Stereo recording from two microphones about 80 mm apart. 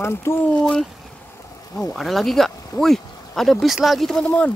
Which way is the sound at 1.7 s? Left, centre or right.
Centre.